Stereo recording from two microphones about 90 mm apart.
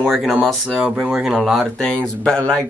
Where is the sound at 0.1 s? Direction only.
Centre (ahead or behind).